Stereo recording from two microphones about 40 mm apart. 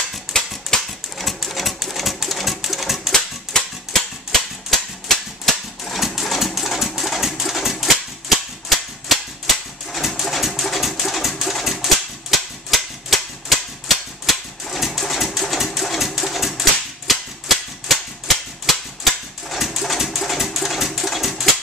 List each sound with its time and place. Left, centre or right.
0.7 s dog: centre
1.1 s a sound: centre
2.1 s sewing machine: centre
3.1 s typewriter: centre
5.9 s engine: centre
7.2 s typewriter: centre
10.2 s a sound: centre
14.9 s pigeon: centre
17.1 s cap gun: centre
19.5 s a sound: centre